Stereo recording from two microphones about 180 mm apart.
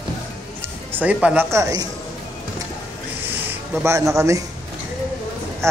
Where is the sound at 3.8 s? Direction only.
15° right (ahead or behind).